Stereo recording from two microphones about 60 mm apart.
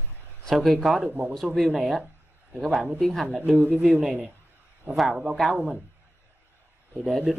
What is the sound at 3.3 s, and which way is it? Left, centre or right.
Speech, right.